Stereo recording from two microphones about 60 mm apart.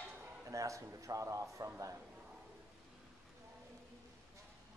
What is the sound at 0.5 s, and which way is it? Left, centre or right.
A man's voice, right.